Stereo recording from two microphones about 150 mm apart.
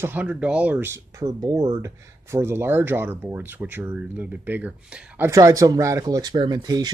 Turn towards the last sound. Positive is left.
turn(degrees=-25)  # may be behind; listen again after turning